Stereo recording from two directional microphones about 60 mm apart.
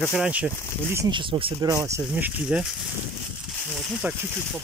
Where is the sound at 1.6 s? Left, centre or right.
Right.